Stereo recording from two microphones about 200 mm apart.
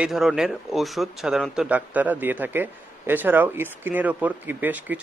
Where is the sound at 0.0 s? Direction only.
Centre (ahead or behind).